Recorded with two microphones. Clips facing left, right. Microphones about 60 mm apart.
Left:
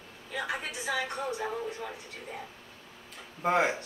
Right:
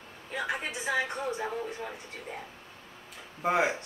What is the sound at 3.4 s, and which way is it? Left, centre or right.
Speech, centre.